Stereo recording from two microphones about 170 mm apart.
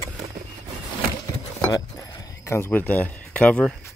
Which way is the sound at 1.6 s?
20° left (ahead or behind).